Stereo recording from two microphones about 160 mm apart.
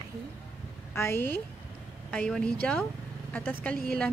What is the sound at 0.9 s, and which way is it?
Speech, 15° left (ahead or behind).